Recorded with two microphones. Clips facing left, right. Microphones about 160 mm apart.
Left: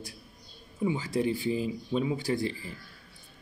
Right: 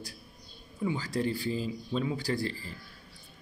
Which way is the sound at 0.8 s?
20° left (ahead or behind).